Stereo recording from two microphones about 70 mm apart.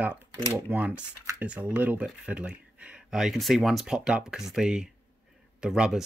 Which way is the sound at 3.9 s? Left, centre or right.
Centre.